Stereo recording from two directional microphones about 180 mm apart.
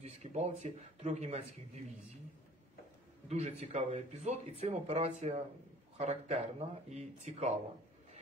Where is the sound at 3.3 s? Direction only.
40° right (ahead or behind).